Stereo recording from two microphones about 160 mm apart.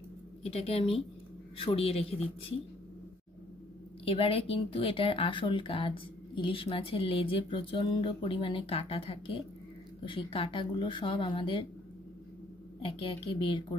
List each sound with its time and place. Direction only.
0.4 s speech: 35° left (ahead or behind)
4.0 s speech: 35° left (ahead or behind)
12.8 s speech: 35° left (ahead or behind)